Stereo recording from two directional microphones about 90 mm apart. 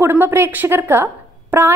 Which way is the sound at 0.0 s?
25° right (ahead or behind).